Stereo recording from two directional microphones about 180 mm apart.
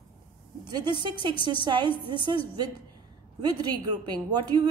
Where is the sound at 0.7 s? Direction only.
25° right (ahead or behind).